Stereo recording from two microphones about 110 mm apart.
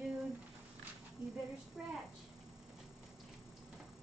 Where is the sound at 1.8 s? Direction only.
10° right (ahead or behind).